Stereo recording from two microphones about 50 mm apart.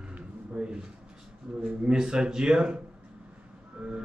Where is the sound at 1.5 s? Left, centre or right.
Right.